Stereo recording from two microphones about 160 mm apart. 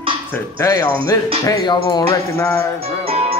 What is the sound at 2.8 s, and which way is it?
Music, 40° right (ahead or behind).